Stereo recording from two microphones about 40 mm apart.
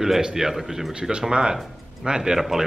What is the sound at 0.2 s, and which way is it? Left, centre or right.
Speech, centre.